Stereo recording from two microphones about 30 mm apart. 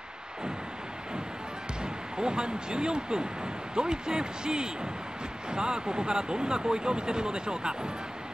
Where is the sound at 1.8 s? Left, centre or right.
Right.